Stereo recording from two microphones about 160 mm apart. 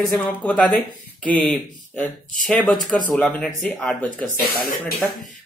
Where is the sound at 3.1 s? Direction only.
10° left (ahead or behind).